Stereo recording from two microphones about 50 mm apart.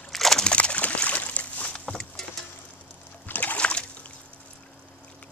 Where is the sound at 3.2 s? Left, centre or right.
Left.